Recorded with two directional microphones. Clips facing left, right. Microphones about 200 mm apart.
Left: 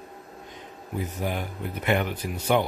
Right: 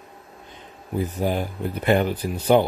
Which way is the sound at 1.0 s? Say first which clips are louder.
Right 6 dB; 30° right (ahead or behind).